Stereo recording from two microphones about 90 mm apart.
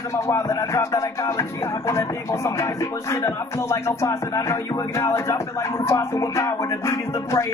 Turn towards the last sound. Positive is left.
turn(degrees=35)  # may be behind; listen again after turning